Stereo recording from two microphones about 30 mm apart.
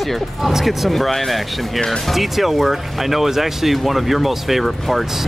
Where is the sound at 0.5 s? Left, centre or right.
Centre.